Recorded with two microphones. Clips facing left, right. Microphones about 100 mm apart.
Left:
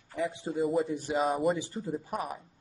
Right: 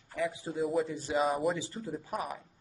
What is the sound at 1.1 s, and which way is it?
Speech, centre (ahead or behind).